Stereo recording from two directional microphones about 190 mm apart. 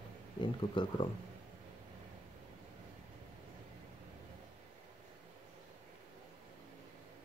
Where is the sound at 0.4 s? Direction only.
25° left (ahead or behind).